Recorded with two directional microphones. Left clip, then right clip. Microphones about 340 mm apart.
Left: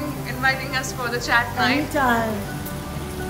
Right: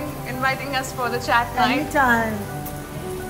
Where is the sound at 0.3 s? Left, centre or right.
Centre.